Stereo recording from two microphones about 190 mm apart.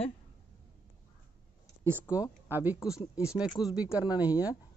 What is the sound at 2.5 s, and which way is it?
A woman's voice, 10° right (ahead or behind).